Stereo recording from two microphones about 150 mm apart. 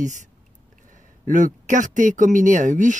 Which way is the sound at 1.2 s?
60° right (ahead or behind).